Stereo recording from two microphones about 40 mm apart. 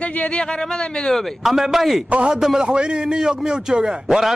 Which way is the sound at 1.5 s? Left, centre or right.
Centre.